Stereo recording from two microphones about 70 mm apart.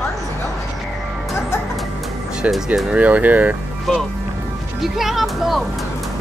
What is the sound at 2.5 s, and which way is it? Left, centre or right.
Speech, centre.